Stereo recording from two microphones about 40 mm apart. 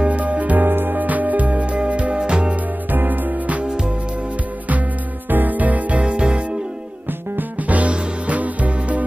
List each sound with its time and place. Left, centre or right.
0.0 s music: right
0.7 s music: right
2.5 s music: right
3.6 s music: right
5.3 s music: right
7.6 s music: right